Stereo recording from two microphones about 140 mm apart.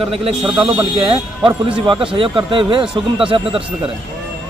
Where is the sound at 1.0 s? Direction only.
35° right (ahead or behind).